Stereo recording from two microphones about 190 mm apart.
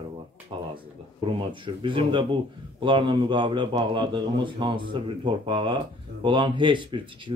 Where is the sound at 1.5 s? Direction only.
25° right (ahead or behind).